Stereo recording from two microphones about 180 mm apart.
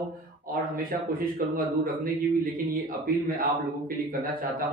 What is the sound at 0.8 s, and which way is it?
Speech, 50° right (ahead or behind).